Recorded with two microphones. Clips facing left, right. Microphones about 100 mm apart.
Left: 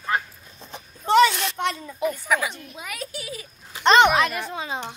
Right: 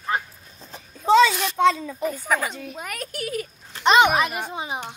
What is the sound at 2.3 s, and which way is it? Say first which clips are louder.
A woman's voice: even; 45° right (ahead or behind).